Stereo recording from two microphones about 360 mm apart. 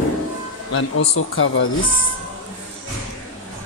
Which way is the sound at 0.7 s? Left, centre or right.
Left.